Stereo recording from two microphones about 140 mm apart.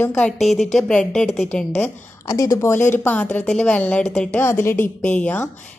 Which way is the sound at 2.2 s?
25° left (ahead or behind).